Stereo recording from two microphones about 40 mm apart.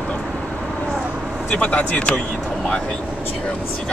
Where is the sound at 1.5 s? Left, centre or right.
Left.